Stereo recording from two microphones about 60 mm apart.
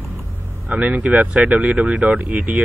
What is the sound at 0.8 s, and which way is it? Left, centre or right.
Speech, right.